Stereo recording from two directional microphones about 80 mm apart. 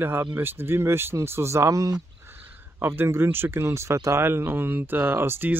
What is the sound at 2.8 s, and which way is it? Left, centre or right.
Speech, right.